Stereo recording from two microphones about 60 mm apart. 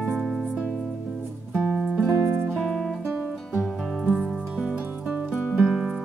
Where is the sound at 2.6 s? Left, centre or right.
Centre.